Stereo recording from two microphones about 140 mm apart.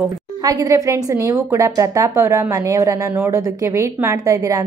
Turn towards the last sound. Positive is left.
turn(degrees=-20)  # may be behind; listen again after turning